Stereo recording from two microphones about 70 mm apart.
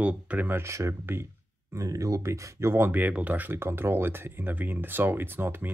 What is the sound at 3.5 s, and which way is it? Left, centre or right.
Speech, right.